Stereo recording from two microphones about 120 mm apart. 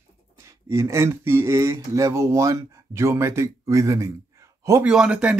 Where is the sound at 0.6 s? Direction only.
25° right (ahead or behind).